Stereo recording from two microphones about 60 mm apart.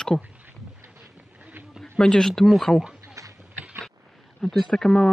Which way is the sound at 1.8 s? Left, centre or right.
Centre.